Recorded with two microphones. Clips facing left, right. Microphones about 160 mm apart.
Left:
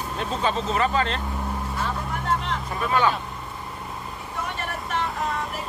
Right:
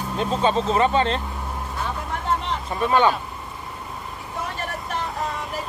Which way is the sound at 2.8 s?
25° right (ahead or behind).